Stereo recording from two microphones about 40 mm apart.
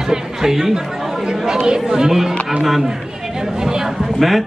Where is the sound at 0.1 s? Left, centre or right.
Centre.